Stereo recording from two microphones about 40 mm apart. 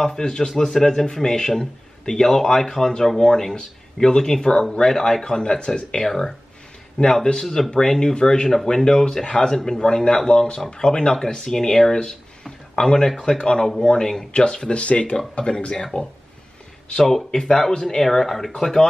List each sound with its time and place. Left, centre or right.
0.2 s speech: centre
6.0 s speech: centre
14.3 s speech: left
16.9 s speech: centre